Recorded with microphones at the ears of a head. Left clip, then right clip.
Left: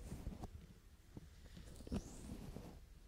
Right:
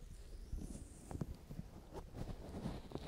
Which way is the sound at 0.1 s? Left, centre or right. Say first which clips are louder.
Left 8 dB; left.